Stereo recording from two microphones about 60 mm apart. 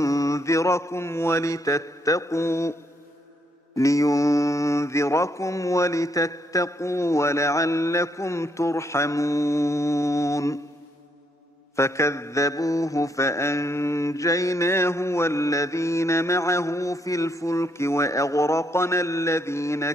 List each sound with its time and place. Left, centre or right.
0.0 s mantra: left
3.7 s mantra: left
11.7 s mantra: left